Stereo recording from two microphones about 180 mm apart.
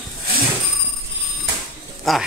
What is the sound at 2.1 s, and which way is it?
Speech, centre (ahead or behind).